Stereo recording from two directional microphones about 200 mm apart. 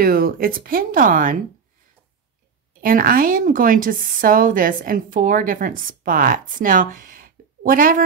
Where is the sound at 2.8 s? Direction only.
45° right (ahead or behind).